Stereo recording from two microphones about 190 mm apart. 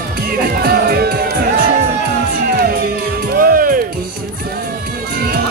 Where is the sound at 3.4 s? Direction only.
50° right (ahead or behind).